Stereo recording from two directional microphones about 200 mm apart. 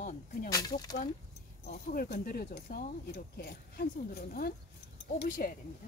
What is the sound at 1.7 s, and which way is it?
Speech, 45° left (ahead or behind).